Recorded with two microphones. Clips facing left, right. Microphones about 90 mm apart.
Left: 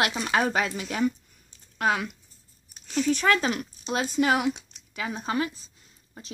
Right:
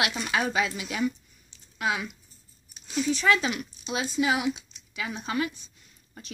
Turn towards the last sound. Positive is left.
turn(degrees=30)  # may be behind; listen again after turning